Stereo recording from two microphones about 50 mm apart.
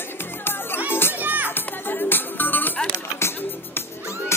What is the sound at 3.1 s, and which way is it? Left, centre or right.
Music, left.